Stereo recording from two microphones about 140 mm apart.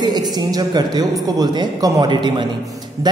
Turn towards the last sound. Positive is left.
turn(degrees=-30)  # may be behind; listen again after turning